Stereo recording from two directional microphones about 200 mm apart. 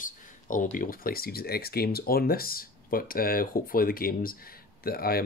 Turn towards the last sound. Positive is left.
turn(degrees=50)  # may be behind; listen again after turning